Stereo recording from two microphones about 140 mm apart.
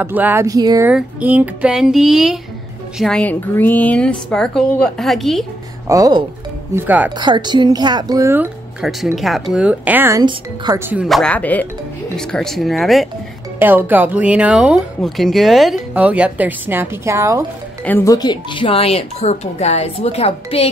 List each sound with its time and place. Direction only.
0.0 s speech: 15° right (ahead or behind)
0.8 s speech: 10° right (ahead or behind)
3.0 s a woman's voice: 5° left (ahead or behind)
5.9 s speech: 25° right (ahead or behind)
6.7 s speech: 15° right (ahead or behind)
7.2 s a woman's voice: 35° right (ahead or behind)
8.8 s speech: centre (ahead or behind)
10.1 s speech: 30° right (ahead or behind)
11.1 s speech: centre (ahead or behind)
11.3 s a woman's voice: 10° left (ahead or behind)
13.6 s speech: 15° right (ahead or behind)
18.0 s speech: 30° left (ahead or behind); by 20.6 s 45° left (ahead or behind)